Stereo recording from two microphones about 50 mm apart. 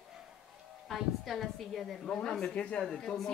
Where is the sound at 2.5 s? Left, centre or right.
Left.